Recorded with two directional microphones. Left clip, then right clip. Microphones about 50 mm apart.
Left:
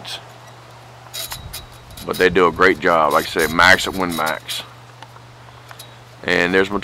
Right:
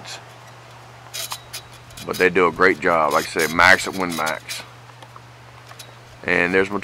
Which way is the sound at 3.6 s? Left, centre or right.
Centre.